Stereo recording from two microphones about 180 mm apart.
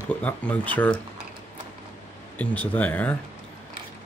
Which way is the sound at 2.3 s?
10° left (ahead or behind).